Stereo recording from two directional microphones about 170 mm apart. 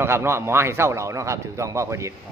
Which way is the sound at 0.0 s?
15° right (ahead or behind).